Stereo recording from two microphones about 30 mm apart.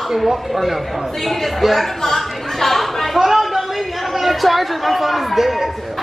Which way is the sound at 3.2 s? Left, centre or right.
Centre.